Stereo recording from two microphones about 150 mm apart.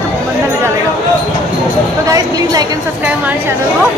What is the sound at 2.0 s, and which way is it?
Speech, 25° right (ahead or behind).